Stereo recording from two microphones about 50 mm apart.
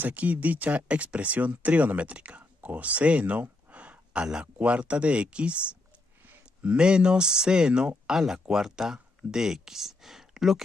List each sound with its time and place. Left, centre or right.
0.0 s speech: right
6.2 s a sound: right
6.8 s speech: centre